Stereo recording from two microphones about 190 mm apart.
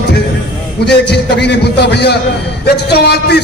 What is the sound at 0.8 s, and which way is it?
A man's voice, 60° left (ahead or behind).